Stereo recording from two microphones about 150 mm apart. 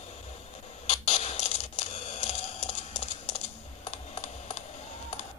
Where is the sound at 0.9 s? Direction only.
45° left (ahead or behind).